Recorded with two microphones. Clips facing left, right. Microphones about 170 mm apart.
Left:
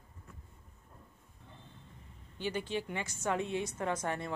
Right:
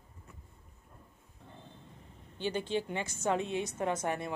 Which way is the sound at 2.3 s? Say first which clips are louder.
Right 3 dB; 25° right (ahead or behind).